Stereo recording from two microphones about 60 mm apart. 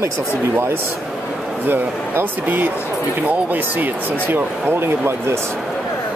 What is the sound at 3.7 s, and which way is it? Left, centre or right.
Speech, right.